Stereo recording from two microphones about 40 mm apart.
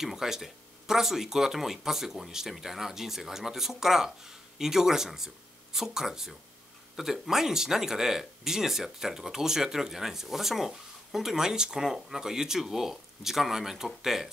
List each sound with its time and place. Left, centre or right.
0.0 s speech: centre